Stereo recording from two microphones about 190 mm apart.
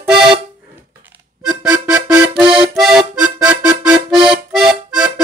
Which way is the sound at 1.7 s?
15° right (ahead or behind).